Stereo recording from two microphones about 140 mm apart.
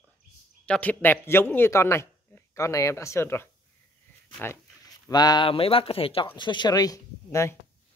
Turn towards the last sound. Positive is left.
turn(degrees=20)  # may be behind; listen again after turning